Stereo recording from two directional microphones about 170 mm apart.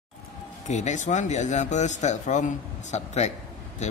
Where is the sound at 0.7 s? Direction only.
45° left (ahead or behind).